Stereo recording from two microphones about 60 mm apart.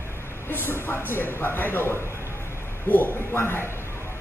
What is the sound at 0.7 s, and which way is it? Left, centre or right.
A man's voice, left.